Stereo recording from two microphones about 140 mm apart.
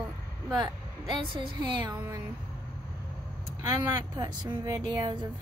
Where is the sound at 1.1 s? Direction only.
35° right (ahead or behind).